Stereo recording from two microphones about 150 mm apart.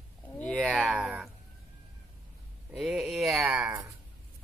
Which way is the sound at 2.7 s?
5° right (ahead or behind).